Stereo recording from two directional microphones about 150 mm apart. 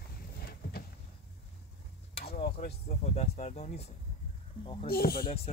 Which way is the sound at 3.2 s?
45° left (ahead or behind).